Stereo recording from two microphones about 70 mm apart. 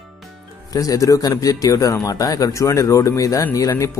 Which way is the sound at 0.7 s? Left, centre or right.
Left.